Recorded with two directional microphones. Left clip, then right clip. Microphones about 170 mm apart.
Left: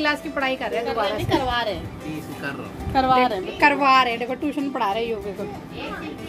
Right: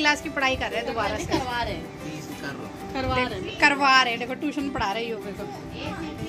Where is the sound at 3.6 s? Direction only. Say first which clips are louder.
Left 2 dB; centre (ahead or behind).